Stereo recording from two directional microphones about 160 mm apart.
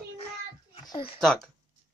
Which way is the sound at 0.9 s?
35° left (ahead or behind).